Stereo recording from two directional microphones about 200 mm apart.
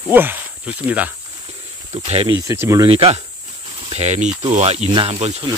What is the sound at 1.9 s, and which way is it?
Speech, 30° right (ahead or behind).